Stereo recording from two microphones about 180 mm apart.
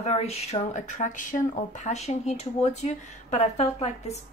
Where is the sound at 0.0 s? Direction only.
35° left (ahead or behind).